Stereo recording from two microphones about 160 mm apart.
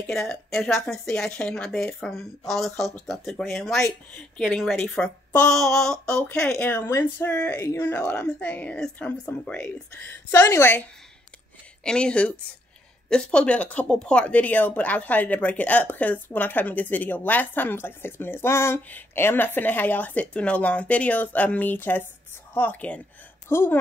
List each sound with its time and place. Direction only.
0.0 s a woman's voice: 5° left (ahead or behind)
10.3 s speech: 20° left (ahead or behind)